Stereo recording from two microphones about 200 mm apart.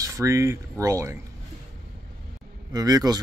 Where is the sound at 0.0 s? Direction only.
15° right (ahead or behind).